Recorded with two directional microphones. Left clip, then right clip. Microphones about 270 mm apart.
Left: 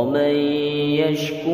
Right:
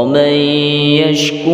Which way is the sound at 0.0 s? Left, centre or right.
Right.